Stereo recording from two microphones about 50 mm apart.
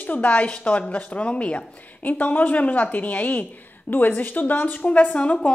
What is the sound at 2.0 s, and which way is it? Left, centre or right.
A woman's voice, left.